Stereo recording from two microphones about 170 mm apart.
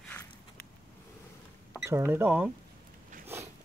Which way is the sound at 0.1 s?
10° left (ahead or behind).